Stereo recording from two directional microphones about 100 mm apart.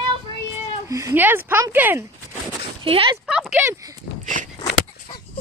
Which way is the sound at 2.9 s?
70° right (ahead or behind).